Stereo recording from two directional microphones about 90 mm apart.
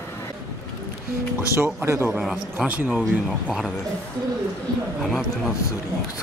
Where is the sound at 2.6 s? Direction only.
15° right (ahead or behind).